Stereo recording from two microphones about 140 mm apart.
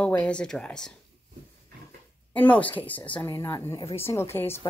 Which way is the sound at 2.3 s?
10° left (ahead or behind).